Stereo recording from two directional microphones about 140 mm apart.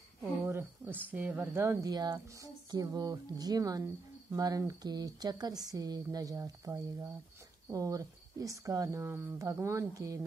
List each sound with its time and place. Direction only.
0.5 s speech: 15° right (ahead or behind)